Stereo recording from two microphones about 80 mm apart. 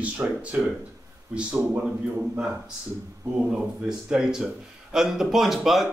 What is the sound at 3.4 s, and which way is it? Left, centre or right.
A man's voice, centre.